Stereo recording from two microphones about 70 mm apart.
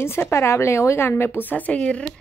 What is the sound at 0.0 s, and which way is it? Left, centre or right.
Speech, left.